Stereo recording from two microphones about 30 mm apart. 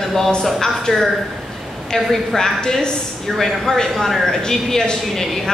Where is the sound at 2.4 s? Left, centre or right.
Left.